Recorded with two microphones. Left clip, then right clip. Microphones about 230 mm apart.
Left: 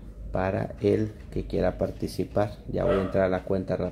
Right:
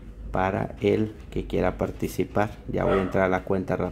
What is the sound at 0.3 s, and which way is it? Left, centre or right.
Speech, centre.